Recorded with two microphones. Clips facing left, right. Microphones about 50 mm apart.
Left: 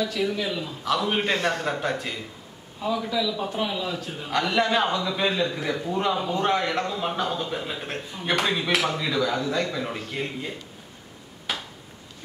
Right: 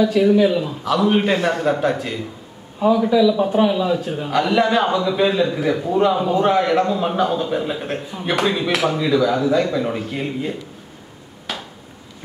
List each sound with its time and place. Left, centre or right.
0.0 s a man's voice: centre
0.8 s a man's voice: centre
2.9 s a man's voice: centre
11.5 s a sound: centre